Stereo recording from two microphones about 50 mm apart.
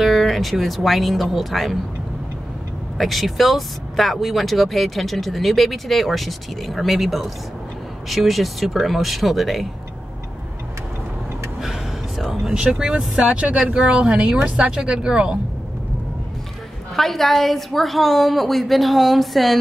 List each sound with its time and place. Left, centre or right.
0.0 s speech: centre
3.0 s speech: centre
12.2 s vehicle: centre
12.5 s speech: right
13.2 s speech: right
13.8 s speech: centre
16.9 s speech: centre